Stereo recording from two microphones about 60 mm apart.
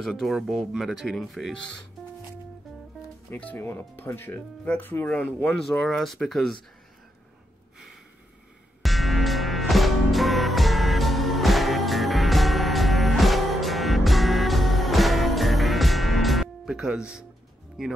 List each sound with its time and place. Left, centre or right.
0.0 s speech: centre
3.5 s speech: left
5.6 s speech: centre
8.8 s music: centre
16.6 s speech: centre